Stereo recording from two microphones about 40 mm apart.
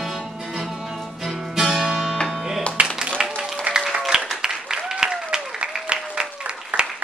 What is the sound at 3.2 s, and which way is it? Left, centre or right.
Applause, centre.